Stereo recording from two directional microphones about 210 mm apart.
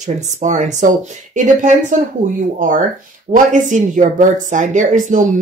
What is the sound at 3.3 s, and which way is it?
Speech, 40° right (ahead or behind).